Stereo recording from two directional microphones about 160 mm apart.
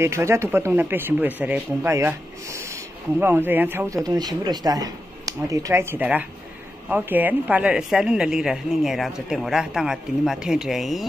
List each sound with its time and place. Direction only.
0.0 s a woman's voice: 15° right (ahead or behind); by 11.1 s centre (ahead or behind)